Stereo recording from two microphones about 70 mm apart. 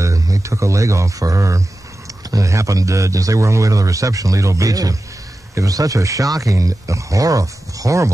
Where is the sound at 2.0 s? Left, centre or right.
Right.